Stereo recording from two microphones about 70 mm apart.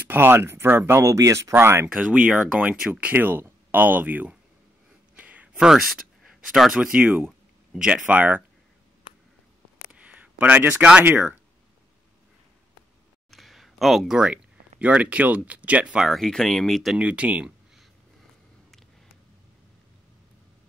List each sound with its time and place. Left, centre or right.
0.0 s speech: right
1.5 s speech: right
1.9 s speech: centre
5.1 s a sound: right
5.6 s speech: centre
7.0 s speech: right
7.7 s speech: centre
8.1 s speech: right
9.8 s a sound: centre
11.1 s speech: right
13.3 s speech: centre
16.1 s speech: centre
16.9 s speech: centre